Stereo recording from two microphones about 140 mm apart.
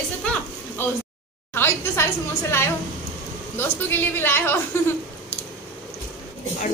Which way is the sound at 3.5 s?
15° left (ahead or behind).